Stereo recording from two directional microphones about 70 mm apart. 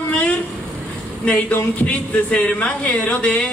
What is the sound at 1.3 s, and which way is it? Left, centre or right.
A man's voice, centre.